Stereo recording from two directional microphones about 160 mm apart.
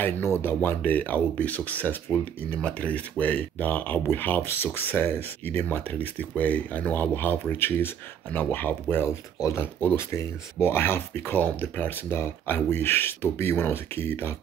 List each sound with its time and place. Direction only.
0.0 s speech: 15° left (ahead or behind)